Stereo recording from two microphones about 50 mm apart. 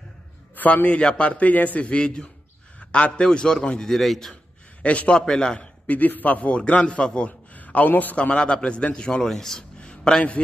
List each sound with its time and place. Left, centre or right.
0.8 s a man's voice: left
3.3 s a man's voice: centre
3.9 s a man's voice: centre
4.8 s a man's voice: left
5.9 s a man's voice: left
6.5 s a man's voice: left
8.4 s a man's voice: centre
9.8 s a sound: centre